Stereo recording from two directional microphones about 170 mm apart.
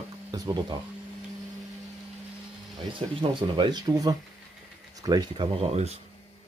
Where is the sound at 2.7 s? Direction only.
30° right (ahead or behind).